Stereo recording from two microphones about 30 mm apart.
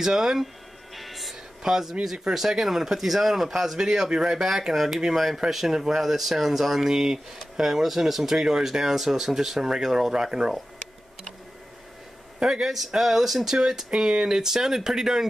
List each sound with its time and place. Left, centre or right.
0.0 s speech: centre
0.9 s music: centre
1.6 s speech: centre
3.7 s speech: centre
5.1 s speech: centre
7.8 s speech: centre
12.4 s speech: right
12.6 s speech: centre
13.6 s speech: centre